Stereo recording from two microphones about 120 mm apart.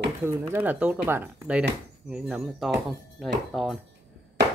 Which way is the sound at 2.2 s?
Centre (ahead or behind).